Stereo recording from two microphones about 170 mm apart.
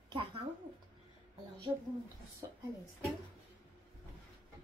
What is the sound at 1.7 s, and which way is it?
Speech, 15° right (ahead or behind).